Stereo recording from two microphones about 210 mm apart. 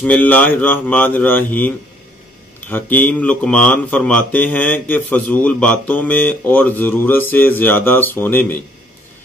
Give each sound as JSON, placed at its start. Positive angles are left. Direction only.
{"t": 0.0, "sound": "speech", "side_deg": 5}
{"t": 2.7, "sound": "speech", "side_deg": 10}